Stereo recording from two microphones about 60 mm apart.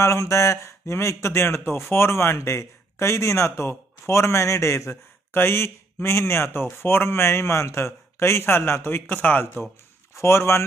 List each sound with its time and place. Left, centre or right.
0.0 s speech: left
5.3 s speech: left
10.1 s speech: left